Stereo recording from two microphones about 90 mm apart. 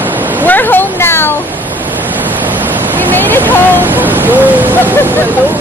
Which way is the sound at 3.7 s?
20° right (ahead or behind).